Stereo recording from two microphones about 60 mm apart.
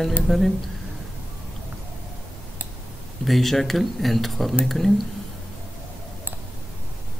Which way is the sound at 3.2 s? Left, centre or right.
Centre.